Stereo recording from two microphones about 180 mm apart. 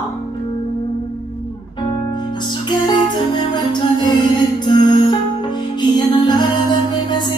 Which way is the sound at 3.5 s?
25° left (ahead or behind).